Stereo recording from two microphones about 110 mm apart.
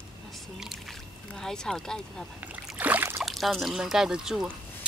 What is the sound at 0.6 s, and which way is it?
Speech, centre (ahead or behind).